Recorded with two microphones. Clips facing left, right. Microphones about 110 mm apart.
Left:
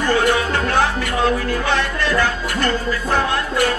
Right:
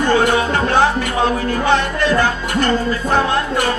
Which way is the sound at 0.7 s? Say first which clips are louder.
Right 3 dB; 25° right (ahead or behind).